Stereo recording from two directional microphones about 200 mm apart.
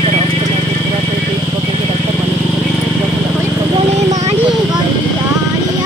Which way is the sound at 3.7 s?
30° right (ahead or behind).